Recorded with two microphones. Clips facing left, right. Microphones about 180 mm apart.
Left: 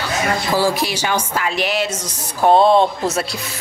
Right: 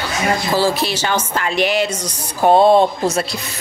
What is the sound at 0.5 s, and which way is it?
A woman's voice, 15° left (ahead or behind).